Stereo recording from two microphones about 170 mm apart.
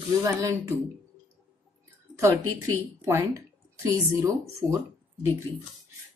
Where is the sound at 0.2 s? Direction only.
20° right (ahead or behind).